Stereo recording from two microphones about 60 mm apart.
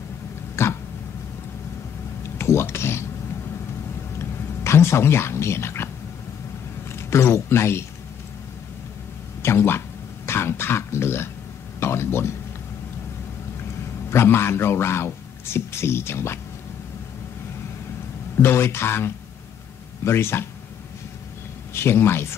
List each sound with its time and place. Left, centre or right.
0.6 s throat clearing: left
2.3 s speech: left
4.2 s a sound: left
6.9 s a man's voice: left
9.4 s speech: left
14.1 s a man's voice: left
18.4 s a man's voice: left
21.7 s a man's voice: left